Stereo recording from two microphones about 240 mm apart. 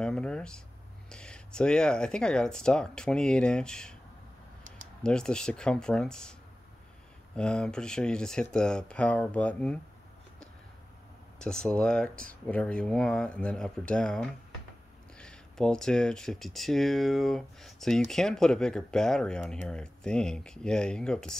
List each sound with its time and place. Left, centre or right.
0.0 s speech: centre
5.0 s speech: centre
7.3 s speech: centre
11.3 s speech: centre